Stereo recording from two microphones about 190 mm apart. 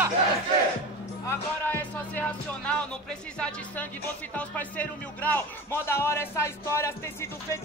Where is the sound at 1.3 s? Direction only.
10° left (ahead or behind).